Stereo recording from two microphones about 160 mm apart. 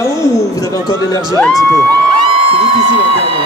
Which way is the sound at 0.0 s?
20° left (ahead or behind).